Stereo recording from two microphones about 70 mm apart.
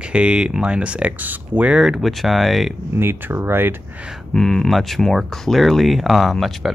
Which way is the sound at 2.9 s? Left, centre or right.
Right.